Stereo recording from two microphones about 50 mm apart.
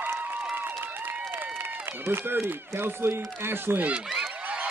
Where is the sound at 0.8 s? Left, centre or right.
Right.